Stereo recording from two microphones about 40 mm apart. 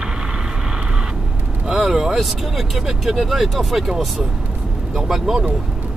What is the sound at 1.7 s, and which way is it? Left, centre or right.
Vehicle, centre.